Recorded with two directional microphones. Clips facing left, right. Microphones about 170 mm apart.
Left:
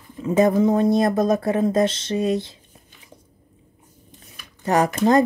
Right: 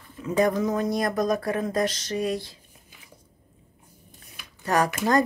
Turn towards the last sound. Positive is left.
turn(degrees=20)  # may be behind; listen again after turning